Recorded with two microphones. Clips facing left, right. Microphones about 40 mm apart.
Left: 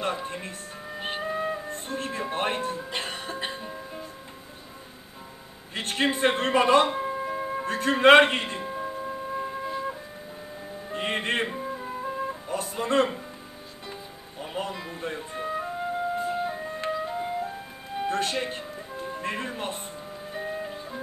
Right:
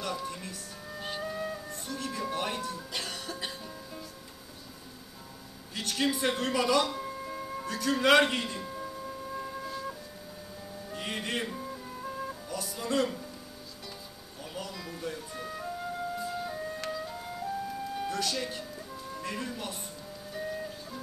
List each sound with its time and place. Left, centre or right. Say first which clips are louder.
0.0 s speech: left 5 dB; left
5.8 s music: left 5 dB; left
14.4 s flute: left 7 dB; left
20.2 s music: left 3 dB; left